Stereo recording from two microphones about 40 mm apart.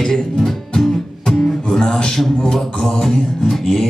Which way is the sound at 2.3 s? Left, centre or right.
Left.